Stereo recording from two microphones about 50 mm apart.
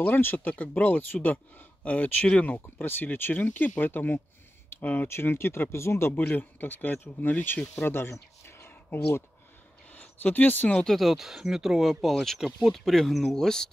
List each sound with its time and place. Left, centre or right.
0.0 s speech: left
2.8 s speech: left
5.0 s speech: left
6.1 s speech: left
7.7 s speech: left
8.6 s a sound: left
9.9 s speech: left
10.9 s speech: centre